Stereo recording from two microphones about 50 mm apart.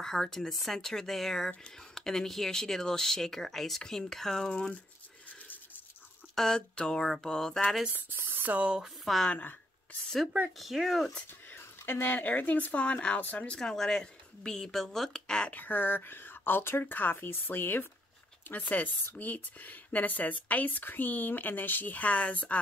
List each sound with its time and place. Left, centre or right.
0.0 s speech: centre
6.3 s speech: centre
8.4 s speech: right
9.3 s speech: left
10.6 s speech: centre
11.5 s speech: left
13.5 s speech: centre
15.5 s speech: left